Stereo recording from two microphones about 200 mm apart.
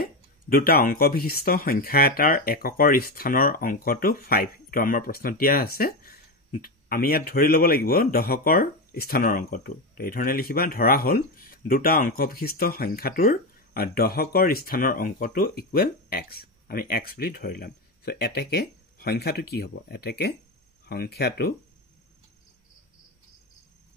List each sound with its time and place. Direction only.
0.0 s speech: 50° left (ahead or behind)